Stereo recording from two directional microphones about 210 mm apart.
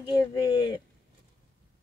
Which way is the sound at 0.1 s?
20° left (ahead or behind).